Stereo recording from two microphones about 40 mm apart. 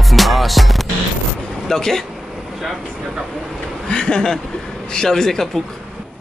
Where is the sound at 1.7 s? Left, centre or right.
Centre.